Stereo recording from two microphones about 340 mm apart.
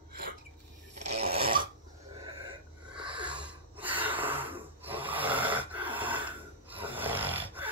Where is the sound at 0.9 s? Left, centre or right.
Centre.